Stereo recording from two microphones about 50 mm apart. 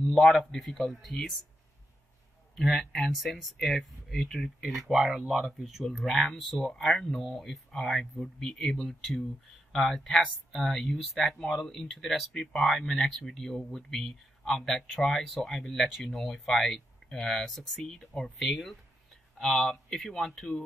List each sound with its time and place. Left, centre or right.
0.2 s speech: centre
2.5 s speech: centre
5.9 s speech: centre
11.2 s speech: centre
11.5 s speech: centre